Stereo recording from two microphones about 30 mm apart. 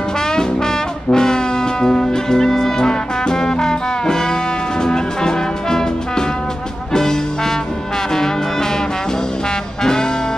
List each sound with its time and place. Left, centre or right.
1.1 s brass instrument: left
4.8 s music: left
6.9 s trombone: left